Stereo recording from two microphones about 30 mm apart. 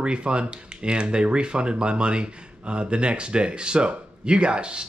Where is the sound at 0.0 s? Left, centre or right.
Right.